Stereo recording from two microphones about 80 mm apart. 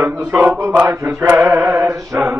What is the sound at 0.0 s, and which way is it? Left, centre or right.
Mantra, right.